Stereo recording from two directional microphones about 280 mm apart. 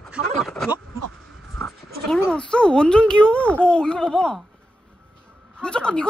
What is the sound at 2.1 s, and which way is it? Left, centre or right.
Speech, centre.